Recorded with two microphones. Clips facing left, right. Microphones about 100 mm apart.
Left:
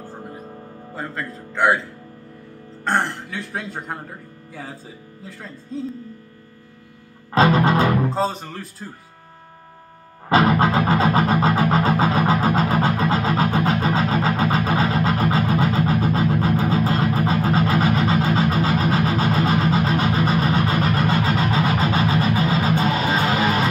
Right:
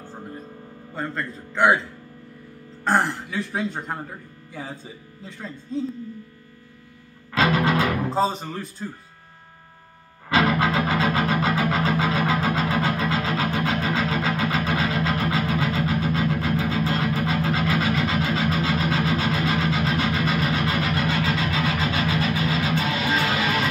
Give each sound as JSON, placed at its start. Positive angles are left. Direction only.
{"t": 0.9, "sound": "speech", "side_deg": 0}
{"t": 7.3, "sound": "music", "side_deg": 35}
{"t": 8.1, "sound": "speech", "side_deg": 0}
{"t": 10.3, "sound": "music", "side_deg": 35}